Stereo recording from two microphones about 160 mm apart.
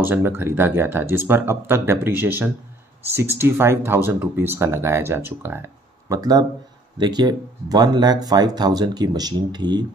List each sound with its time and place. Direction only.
0.0 s speech: 15° right (ahead or behind)